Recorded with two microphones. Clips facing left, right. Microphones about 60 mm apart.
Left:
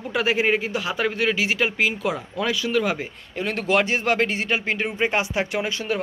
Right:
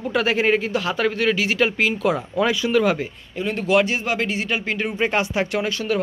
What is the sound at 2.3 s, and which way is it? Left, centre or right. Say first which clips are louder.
Speech: right 4 dB; right.